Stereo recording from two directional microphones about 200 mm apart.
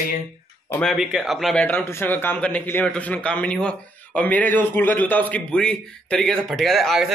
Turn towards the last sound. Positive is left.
turn(degrees=0)  # may be behind; listen again after turning